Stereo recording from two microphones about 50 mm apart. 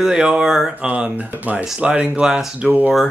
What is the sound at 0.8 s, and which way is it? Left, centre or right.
Speech, right.